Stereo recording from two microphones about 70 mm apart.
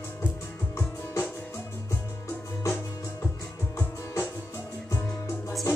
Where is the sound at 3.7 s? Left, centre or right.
Left.